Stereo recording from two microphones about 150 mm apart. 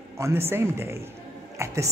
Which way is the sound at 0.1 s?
15° right (ahead or behind).